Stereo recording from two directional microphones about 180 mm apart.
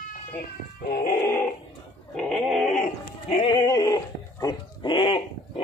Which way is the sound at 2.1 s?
Centre (ahead or behind).